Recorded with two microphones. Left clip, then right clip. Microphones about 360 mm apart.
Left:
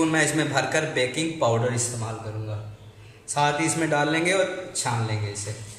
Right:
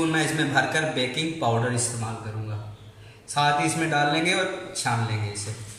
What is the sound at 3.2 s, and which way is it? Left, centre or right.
A man's voice, centre.